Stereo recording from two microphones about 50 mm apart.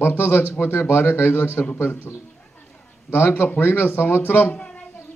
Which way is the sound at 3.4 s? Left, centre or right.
Left.